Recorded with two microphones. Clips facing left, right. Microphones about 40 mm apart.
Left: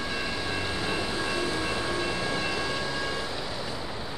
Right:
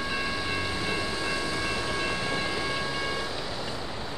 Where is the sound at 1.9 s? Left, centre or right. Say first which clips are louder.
Even; right.